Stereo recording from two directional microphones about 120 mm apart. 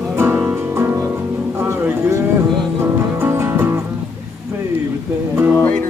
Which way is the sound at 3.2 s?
20° right (ahead or behind).